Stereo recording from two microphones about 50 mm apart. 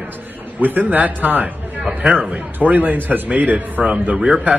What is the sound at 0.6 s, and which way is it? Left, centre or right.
A man's voice, right.